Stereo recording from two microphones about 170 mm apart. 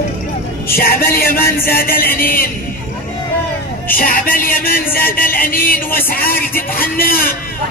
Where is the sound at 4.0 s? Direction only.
55° left (ahead or behind).